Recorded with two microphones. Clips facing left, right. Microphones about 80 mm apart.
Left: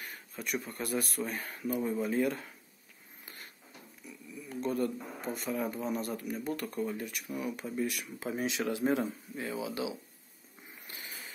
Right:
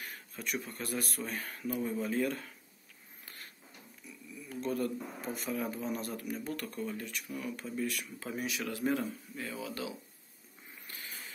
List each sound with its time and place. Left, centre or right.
0.0 s speech: centre
4.5 s speech: centre